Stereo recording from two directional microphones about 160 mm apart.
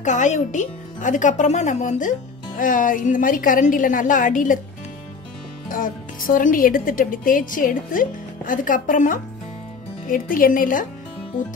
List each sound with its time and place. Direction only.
0.0 s speech: 50° left (ahead or behind)
5.7 s speech: 55° left (ahead or behind)